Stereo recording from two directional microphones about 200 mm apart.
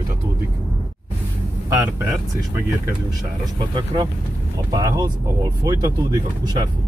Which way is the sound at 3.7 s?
20° right (ahead or behind).